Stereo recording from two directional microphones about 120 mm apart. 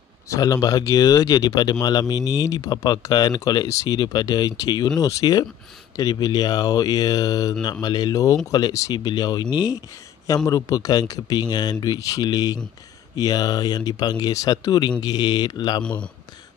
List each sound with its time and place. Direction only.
0.3 s speech: 25° left (ahead or behind)
15.8 s a man's voice: 10° left (ahead or behind)